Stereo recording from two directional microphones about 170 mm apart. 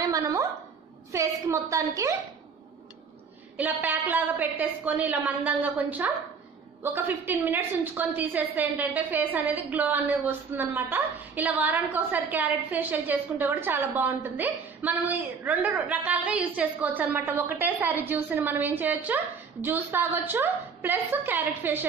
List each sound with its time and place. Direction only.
0.0 s a woman's voice: 20° right (ahead or behind)
3.5 s a woman's voice: 10° right (ahead or behind)